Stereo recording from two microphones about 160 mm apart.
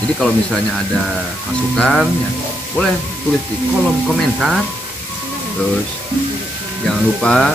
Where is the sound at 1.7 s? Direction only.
5° left (ahead or behind).